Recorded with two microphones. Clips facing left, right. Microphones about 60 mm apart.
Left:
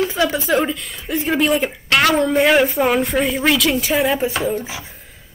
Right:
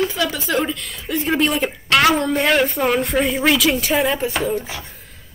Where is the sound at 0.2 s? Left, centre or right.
Centre.